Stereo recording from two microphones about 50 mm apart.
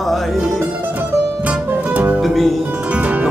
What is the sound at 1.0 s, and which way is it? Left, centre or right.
Music, right.